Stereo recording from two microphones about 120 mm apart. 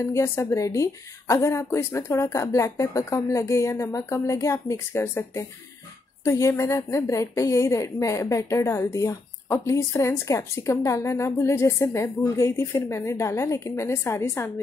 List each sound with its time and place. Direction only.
0.0 s a woman's voice: 25° left (ahead or behind)